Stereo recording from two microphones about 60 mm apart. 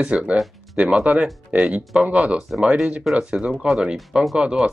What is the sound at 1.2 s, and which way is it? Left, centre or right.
Speech, centre.